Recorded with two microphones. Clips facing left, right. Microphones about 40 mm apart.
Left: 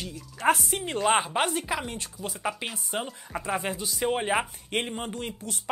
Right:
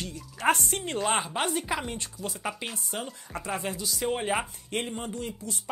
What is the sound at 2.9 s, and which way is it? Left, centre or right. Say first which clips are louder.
Speech: left 3 dB; centre.